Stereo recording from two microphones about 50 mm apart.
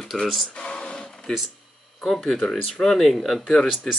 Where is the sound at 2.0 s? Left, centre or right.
Centre.